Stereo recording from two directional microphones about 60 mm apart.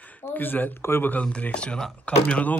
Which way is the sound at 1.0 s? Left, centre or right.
Left.